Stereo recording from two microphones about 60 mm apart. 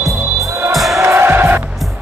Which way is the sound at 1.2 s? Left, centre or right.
Right.